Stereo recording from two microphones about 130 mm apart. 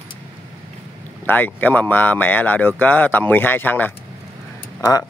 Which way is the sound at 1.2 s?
15° left (ahead or behind).